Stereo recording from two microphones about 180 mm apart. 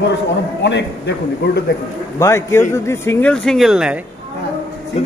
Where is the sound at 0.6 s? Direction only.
75° left (ahead or behind).